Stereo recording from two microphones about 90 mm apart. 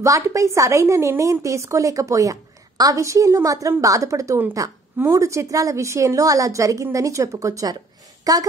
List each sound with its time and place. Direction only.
0.0 s a woman's voice: 35° right (ahead or behind)